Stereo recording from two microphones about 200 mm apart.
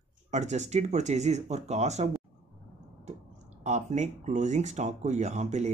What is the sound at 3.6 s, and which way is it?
Speech, 35° right (ahead or behind).